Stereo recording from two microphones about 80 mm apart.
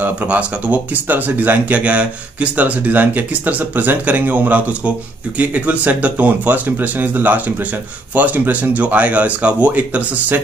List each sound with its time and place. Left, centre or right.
0.0 s speech: centre